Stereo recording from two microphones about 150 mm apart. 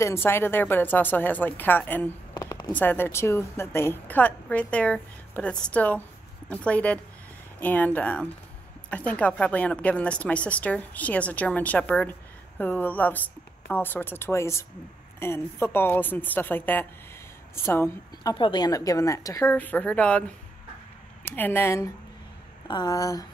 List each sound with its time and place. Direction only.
0.0 s a woman's voice: 15° left (ahead or behind)
2.3 s a sound: 25° left (ahead or behind)
2.7 s a woman's voice: 10° left (ahead or behind)